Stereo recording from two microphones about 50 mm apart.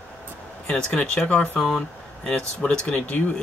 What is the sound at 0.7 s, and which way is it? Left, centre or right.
Speech, centre.